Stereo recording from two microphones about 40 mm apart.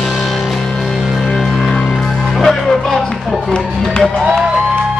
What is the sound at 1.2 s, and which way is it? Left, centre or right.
Music, centre.